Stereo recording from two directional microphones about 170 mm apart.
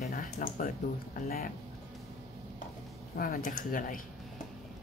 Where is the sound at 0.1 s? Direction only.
50° left (ahead or behind).